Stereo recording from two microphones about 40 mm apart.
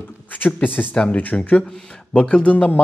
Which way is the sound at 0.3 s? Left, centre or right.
Left.